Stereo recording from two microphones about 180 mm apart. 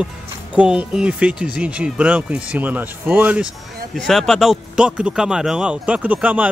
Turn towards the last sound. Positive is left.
turn(degrees=-10)  # may be behind; listen again after turning